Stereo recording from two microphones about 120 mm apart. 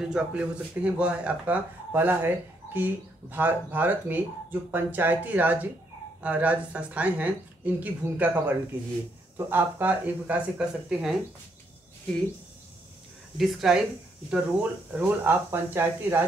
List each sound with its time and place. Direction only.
0.0 s speech: 5° right (ahead or behind)
9.4 s speech: 15° right (ahead or behind)
13.4 s speech: 5° right (ahead or behind)